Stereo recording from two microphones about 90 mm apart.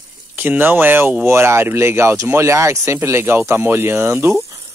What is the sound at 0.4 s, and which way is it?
Speech, 20° right (ahead or behind).